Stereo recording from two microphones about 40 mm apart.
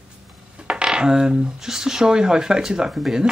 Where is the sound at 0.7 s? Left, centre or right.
Centre.